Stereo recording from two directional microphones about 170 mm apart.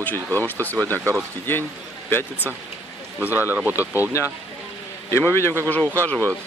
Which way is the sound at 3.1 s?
10° right (ahead or behind).